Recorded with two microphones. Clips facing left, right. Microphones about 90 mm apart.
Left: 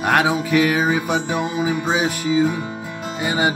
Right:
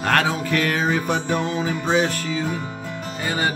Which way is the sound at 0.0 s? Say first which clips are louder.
Left 3 dB; 15° left (ahead or behind).